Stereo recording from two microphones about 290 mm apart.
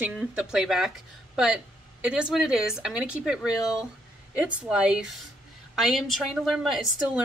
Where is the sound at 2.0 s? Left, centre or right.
Centre.